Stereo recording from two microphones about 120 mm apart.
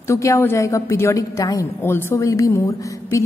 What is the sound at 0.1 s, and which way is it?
A woman's voice, 25° left (ahead or behind).